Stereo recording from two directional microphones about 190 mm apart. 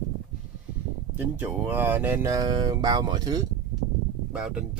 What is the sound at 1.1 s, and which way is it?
Speech, 10° right (ahead or behind).